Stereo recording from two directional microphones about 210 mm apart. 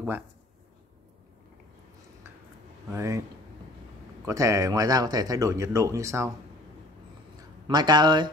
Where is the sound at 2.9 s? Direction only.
15° right (ahead or behind).